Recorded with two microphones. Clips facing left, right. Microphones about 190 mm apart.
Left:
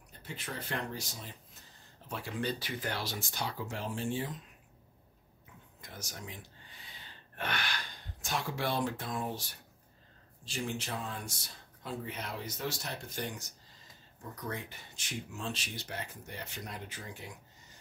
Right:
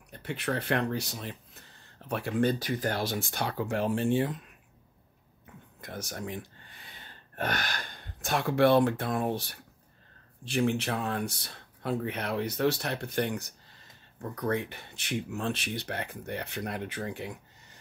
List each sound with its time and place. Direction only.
0.1 s speech: 65° right (ahead or behind)
5.8 s speech: 60° right (ahead or behind)